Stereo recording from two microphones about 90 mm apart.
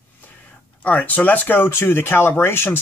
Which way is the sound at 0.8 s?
15° left (ahead or behind).